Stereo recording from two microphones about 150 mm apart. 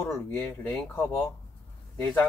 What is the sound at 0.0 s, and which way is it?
Speech, 15° left (ahead or behind).